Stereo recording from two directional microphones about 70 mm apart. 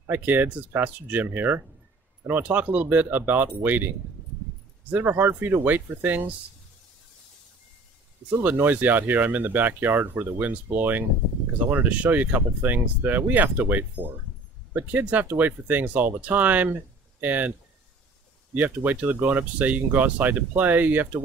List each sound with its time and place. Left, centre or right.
0.0 s speech: right
4.9 s speech: right
8.4 s speech: right